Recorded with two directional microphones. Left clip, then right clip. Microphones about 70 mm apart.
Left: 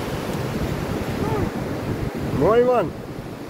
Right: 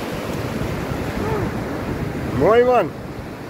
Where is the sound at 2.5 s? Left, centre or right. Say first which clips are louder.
Right 3 dB; left.